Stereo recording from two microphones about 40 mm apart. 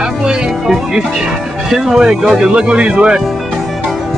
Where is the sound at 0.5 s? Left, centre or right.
Centre.